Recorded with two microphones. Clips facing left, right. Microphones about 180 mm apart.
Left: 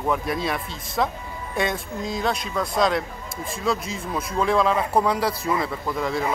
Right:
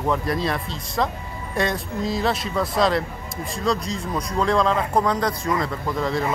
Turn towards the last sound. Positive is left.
turn(degrees=0)  # may be behind; listen again after turning